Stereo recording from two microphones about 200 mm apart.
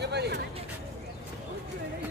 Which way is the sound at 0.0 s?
55° right (ahead or behind).